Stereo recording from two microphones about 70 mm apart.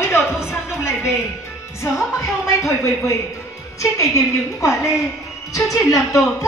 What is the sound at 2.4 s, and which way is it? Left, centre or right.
Speech, left.